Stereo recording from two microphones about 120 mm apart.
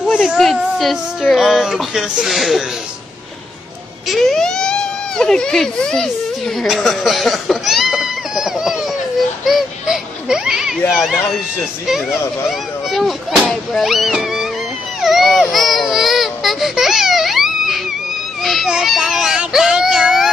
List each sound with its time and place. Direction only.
0.2 s a sound: centre (ahead or behind)
0.6 s child singing: centre (ahead or behind)
1.3 s speech: centre (ahead or behind)
4.1 s speech: 5° left (ahead or behind)
6.6 s a sound: centre (ahead or behind)
9.5 s a child's voice: 5° right (ahead or behind)